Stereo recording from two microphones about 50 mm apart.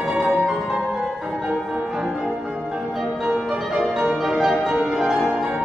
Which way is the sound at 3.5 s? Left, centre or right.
Centre.